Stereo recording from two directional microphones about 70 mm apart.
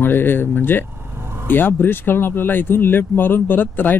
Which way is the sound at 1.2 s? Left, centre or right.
Right.